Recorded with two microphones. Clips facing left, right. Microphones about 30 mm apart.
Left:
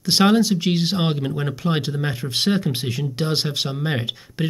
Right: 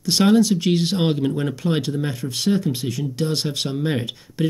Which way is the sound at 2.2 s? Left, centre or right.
Left.